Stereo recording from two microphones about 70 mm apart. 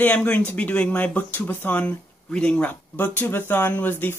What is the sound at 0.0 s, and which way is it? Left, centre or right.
Speech, left.